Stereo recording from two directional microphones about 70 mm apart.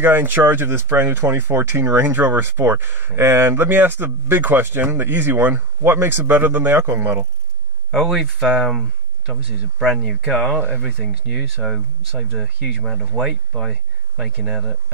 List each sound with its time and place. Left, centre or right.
0.0 s speech: right
7.9 s speech: centre